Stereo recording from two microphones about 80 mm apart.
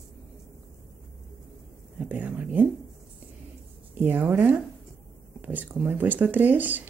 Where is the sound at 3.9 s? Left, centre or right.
Right.